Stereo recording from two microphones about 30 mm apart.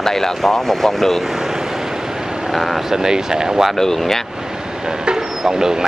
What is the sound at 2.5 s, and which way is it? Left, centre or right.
Speech, centre.